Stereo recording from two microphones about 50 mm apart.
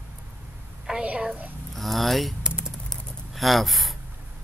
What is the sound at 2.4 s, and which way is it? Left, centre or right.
Typing, centre.